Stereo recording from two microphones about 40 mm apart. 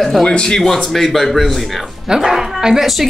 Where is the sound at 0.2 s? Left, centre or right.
Centre.